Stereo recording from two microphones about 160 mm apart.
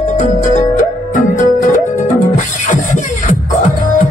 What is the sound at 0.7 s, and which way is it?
Music, 55° left (ahead or behind).